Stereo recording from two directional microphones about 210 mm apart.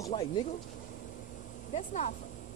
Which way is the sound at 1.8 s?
35° left (ahead or behind).